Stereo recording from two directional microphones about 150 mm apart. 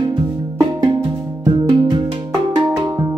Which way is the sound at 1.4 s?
30° right (ahead or behind).